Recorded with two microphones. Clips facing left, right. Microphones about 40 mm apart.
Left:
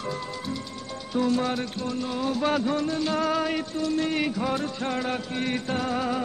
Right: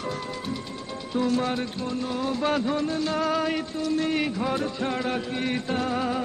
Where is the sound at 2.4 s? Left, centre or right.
Centre.